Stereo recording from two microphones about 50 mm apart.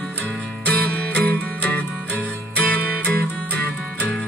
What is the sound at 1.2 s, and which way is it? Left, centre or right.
Music, left.